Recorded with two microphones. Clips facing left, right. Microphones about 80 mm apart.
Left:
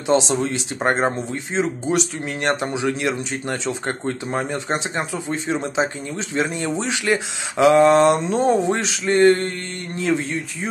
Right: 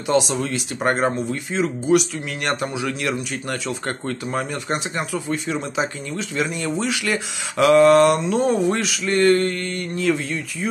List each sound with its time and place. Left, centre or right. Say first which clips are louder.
0.0 s speech: left 1 dB; left